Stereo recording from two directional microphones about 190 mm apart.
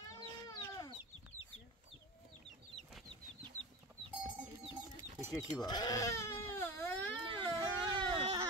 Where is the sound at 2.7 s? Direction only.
Centre (ahead or behind).